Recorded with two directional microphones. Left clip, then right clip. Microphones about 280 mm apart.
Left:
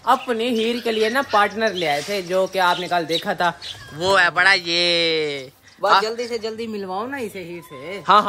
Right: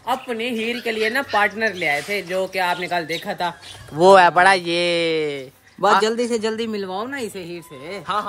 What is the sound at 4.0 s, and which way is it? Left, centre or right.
Speech, centre.